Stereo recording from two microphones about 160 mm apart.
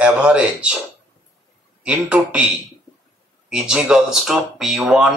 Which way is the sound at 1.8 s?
10° right (ahead or behind).